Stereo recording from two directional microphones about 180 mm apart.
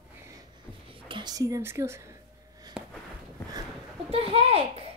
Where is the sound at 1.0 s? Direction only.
25° right (ahead or behind).